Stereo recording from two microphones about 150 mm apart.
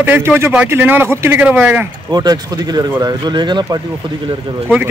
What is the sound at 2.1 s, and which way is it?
Speech, 25° right (ahead or behind).